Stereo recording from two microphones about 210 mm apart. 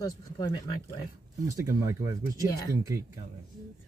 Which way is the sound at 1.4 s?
15° right (ahead or behind).